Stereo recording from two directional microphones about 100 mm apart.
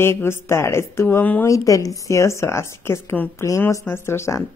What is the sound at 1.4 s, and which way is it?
Speech, 35° left (ahead or behind).